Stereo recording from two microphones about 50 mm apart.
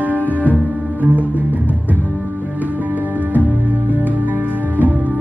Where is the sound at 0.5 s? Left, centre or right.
Right.